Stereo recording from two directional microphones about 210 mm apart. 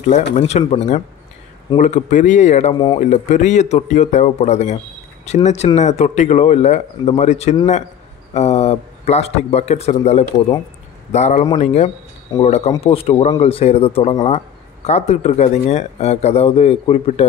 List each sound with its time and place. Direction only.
0.4 s speech: 30° left (ahead or behind)
2.7 s speech: 20° left (ahead or behind)
3.0 s speech: 35° left (ahead or behind)